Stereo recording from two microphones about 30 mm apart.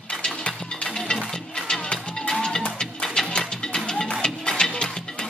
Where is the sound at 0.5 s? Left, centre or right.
Centre.